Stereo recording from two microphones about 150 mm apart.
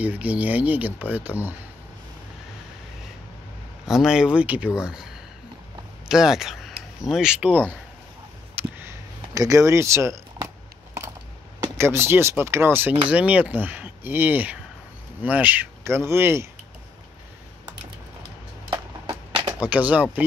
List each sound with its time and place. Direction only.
0.0 s speech: 10° right (ahead or behind)
3.8 s speech: 5° right (ahead or behind)
7.4 s speech: 10° left (ahead or behind)
8.5 s a sound: 15° right (ahead or behind)
9.3 s speech: 20° right (ahead or behind)
11.6 s speech: 15° right (ahead or behind)
18.7 s a sound: 25° right (ahead or behind)
19.6 s speech: 10° right (ahead or behind)